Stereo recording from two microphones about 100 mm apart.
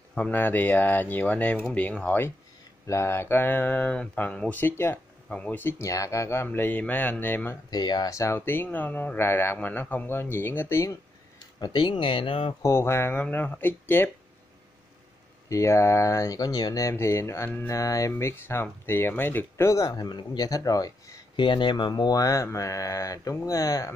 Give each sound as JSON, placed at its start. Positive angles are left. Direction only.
{"t": 0.1, "sound": "a man's voice", "side_deg": 15}
{"t": 7.7, "sound": "a man's voice", "side_deg": 45}
{"t": 11.6, "sound": "speech", "side_deg": 50}
{"t": 12.6, "sound": "a man's voice", "side_deg": 25}
{"t": 15.5, "sound": "speech", "side_deg": 30}
{"t": 16.9, "sound": "a man's voice", "side_deg": 25}
{"t": 19.9, "sound": "speech", "side_deg": 50}
{"t": 21.4, "sound": "speech", "side_deg": 55}